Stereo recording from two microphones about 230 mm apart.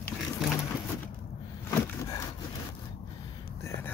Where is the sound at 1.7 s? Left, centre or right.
Centre.